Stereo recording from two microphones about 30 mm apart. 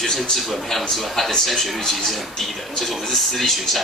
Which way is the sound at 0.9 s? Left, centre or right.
Centre.